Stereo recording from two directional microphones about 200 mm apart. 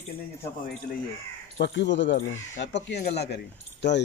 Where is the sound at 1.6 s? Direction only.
60° left (ahead or behind).